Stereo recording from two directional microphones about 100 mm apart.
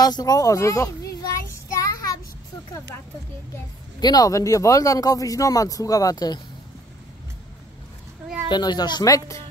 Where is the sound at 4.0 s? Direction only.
40° left (ahead or behind).